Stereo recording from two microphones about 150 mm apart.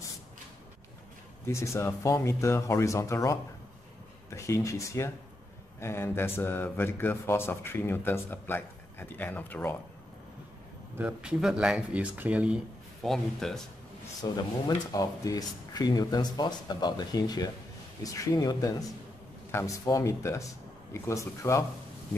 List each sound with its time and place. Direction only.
1.4 s speech: 20° left (ahead or behind)
11.0 s speech: 5° right (ahead or behind)
14.2 s speech: 25° left (ahead or behind)